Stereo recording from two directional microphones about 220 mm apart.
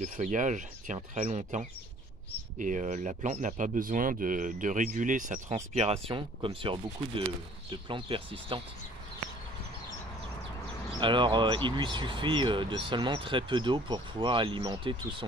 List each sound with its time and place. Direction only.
0.0 s speech: 35° right (ahead or behind)
11.0 s speech: 20° right (ahead or behind)